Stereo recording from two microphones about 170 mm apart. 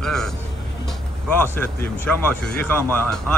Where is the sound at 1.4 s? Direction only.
10° left (ahead or behind).